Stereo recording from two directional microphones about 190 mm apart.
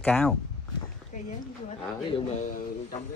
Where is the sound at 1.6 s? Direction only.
35° left (ahead or behind).